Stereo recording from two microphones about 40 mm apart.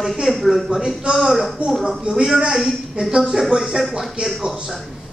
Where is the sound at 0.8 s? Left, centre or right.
Centre.